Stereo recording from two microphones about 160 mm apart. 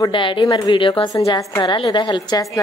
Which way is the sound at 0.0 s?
30° left (ahead or behind).